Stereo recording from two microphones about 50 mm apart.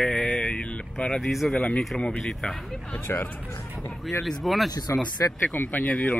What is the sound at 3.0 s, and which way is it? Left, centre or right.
Speech, left.